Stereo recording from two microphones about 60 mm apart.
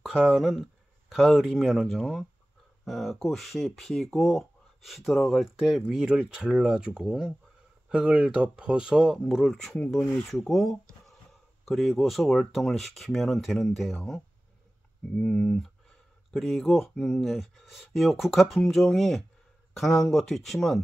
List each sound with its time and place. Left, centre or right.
0.0 s speech: centre